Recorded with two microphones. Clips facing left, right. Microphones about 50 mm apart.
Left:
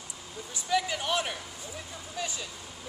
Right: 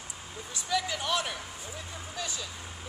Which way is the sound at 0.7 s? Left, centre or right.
Centre.